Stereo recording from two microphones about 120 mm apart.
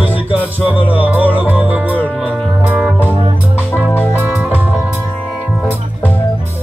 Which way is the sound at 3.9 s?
15° left (ahead or behind).